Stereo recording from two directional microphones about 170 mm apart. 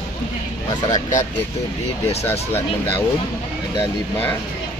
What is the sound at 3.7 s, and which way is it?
Speech, 10° left (ahead or behind).